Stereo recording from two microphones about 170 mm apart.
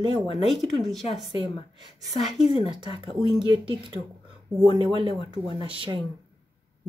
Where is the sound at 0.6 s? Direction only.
Centre (ahead or behind).